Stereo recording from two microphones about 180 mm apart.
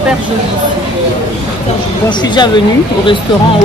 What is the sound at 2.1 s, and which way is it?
Speech, 25° left (ahead or behind).